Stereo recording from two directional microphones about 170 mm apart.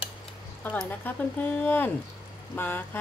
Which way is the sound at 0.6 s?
10° left (ahead or behind).